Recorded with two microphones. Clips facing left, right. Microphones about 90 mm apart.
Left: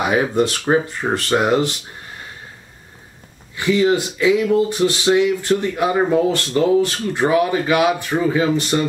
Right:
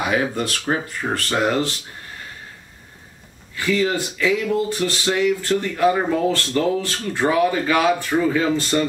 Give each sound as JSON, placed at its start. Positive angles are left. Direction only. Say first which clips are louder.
{"t": 0.0, "sound": "speech", "louder": "left 4 dB", "side_deg": 25}
{"t": 3.5, "sound": "speech", "louder": "left 4 dB", "side_deg": 20}